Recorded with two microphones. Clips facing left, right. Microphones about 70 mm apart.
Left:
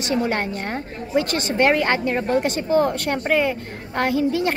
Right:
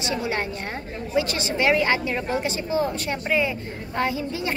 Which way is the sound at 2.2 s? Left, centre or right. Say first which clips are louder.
Left 5 dB; left.